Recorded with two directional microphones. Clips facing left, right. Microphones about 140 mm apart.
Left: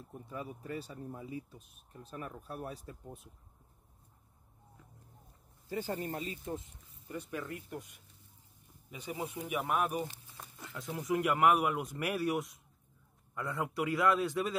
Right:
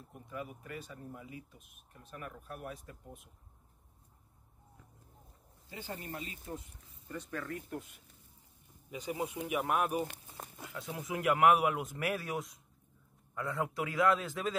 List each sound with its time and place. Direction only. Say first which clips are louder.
0.3 s speech: left 2 dB; 30° left (ahead or behind)
5.7 s speech: left 7 dB; 40° left (ahead or behind); by 7.2 s 25° left (ahead or behind)
7.2 s speech: even; 10° left (ahead or behind)
9.0 s speech: right 2 dB; 5° right (ahead or behind)